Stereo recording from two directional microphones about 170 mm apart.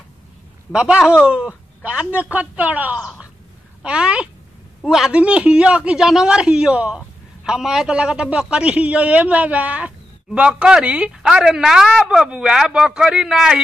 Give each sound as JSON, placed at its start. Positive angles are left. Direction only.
{"t": 0.7, "sound": "a man's voice", "side_deg": -5}